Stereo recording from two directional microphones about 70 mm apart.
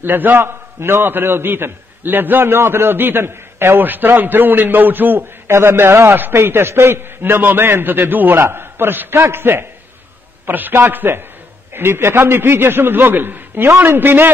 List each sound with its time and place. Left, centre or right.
0.0 s a man's voice: right